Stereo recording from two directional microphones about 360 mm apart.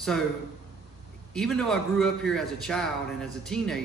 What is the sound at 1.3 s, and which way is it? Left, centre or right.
A man's voice, centre.